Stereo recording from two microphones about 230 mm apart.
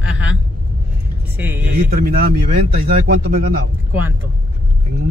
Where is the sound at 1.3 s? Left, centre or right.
Centre.